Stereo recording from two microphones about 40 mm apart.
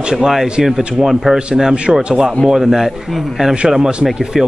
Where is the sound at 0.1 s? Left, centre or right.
Centre.